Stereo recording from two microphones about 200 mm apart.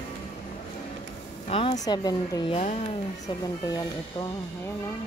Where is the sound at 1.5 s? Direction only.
30° left (ahead or behind).